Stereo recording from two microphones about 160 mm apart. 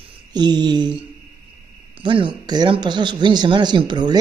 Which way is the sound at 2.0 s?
30° right (ahead or behind).